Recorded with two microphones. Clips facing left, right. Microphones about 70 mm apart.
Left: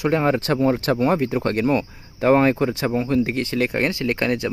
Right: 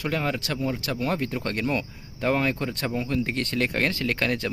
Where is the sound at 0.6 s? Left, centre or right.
Left.